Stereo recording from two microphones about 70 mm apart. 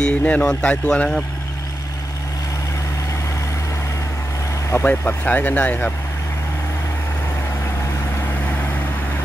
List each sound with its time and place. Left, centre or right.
0.0 s speech: centre
4.8 s speech: left
8.4 s vehicle: left